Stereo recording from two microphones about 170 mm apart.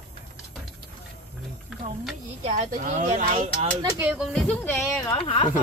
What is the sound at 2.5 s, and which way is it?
Speech, 45° right (ahead or behind).